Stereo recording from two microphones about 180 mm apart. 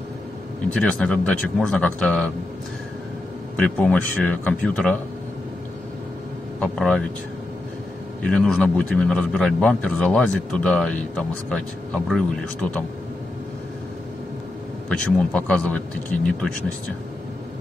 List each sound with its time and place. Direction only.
0.7 s a man's voice: 5° left (ahead or behind)
3.5 s speech: 5° left (ahead or behind)
6.6 s a man's voice: 5° left (ahead or behind)
8.2 s a man's voice: 5° left (ahead or behind)
14.9 s speech: 5° left (ahead or behind)